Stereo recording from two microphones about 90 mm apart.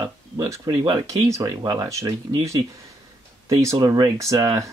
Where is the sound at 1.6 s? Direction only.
50° right (ahead or behind).